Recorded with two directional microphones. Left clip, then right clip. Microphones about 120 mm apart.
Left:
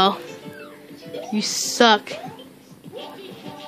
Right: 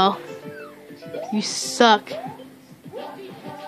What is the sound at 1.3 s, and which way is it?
Speech, centre (ahead or behind).